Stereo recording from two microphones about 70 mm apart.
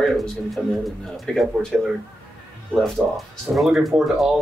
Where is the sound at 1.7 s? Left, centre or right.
Centre.